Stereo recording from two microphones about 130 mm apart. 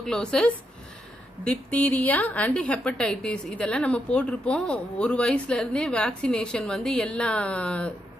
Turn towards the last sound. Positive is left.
turn(degrees=10)  # may be behind; listen again after turning